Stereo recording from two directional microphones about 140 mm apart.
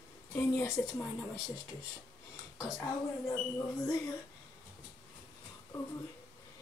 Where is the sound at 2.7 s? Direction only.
15° left (ahead or behind).